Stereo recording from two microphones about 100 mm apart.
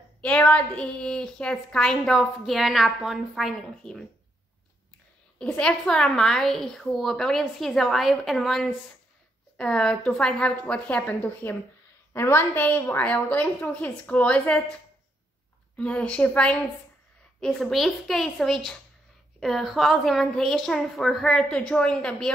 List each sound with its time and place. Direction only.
0.6 s a woman's voice: 10° left (ahead or behind)
5.4 s a woman's voice: 5° left (ahead or behind)
12.1 s a woman's voice: 25° left (ahead or behind)
15.7 s a woman's voice: 10° left (ahead or behind)